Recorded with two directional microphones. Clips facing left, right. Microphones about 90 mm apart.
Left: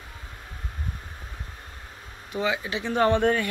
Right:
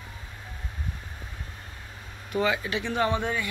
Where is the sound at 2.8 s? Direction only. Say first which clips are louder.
Left 6 dB; 40° left (ahead or behind).